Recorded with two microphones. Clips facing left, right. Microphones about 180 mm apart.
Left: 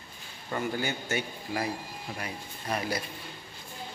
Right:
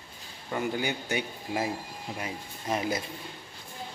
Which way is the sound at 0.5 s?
15° right (ahead or behind).